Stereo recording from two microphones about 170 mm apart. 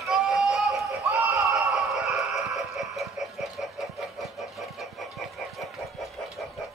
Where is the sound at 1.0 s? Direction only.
20° right (ahead or behind).